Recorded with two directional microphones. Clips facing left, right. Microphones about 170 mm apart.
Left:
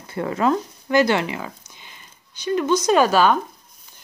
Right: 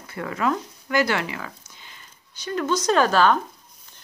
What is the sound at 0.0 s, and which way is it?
Speech, 30° left (ahead or behind).